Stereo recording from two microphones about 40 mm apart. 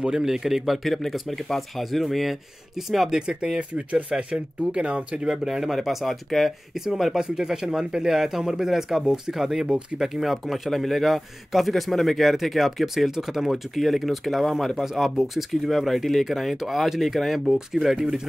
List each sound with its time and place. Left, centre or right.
0.2 s speech: centre
0.8 s a man's voice: centre
3.2 s speech: centre
5.3 s a man's voice: centre
6.7 s speech: centre
7.2 s a man's voice: centre
17.9 s speech: centre